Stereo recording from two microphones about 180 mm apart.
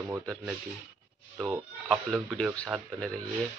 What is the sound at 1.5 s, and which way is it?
Speech, 5° right (ahead or behind).